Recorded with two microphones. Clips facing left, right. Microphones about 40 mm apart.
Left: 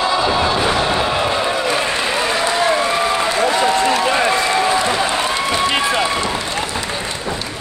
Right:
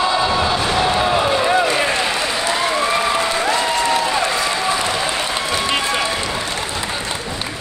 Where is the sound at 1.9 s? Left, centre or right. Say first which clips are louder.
Left 1 dB; centre.